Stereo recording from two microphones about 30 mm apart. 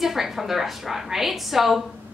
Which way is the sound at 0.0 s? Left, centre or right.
Centre.